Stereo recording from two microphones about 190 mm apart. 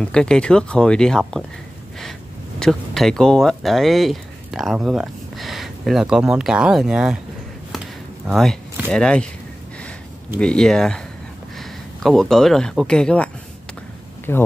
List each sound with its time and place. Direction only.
0.0 s speech: 5° left (ahead or behind)
2.6 s speech: 5° left (ahead or behind)
8.3 s speech: centre (ahead or behind)
10.4 s speech: 5° left (ahead or behind)